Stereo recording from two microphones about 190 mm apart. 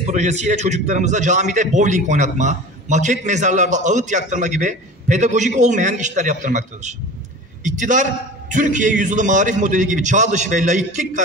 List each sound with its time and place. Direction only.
0.0 s a man's voice: 35° right (ahead or behind)